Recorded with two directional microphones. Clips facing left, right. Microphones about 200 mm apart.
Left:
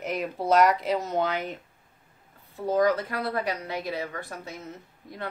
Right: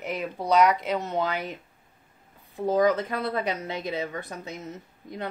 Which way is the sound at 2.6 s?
20° right (ahead or behind).